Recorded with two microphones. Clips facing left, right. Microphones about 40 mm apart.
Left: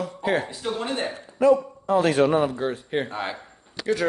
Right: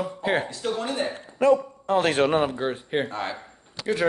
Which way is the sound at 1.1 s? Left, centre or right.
Right.